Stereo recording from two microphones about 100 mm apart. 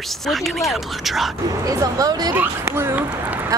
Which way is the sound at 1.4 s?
35° right (ahead or behind).